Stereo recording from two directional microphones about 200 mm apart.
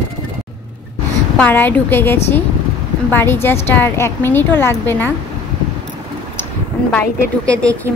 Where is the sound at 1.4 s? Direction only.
10° left (ahead or behind).